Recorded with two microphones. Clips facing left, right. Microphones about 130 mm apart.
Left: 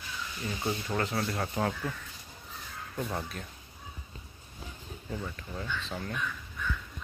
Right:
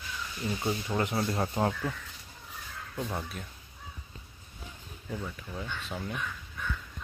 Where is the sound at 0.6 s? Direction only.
10° right (ahead or behind).